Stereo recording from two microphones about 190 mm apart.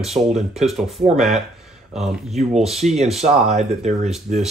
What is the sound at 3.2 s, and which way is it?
Speech, 35° right (ahead or behind).